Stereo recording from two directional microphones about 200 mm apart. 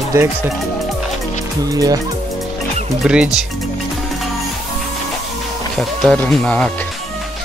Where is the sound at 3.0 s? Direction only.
5° right (ahead or behind).